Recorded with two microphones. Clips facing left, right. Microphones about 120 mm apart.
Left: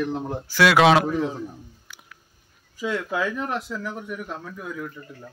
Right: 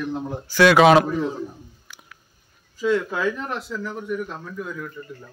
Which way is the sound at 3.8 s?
10° left (ahead or behind).